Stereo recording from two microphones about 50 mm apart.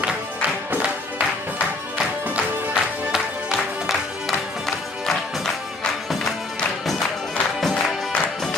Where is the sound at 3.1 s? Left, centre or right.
Centre.